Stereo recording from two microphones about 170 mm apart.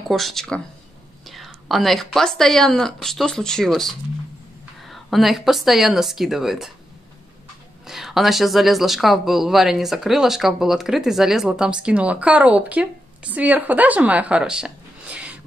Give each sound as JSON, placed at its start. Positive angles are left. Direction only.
{"t": 0.1, "sound": "speech", "side_deg": 0}
{"t": 7.8, "sound": "speech", "side_deg": 0}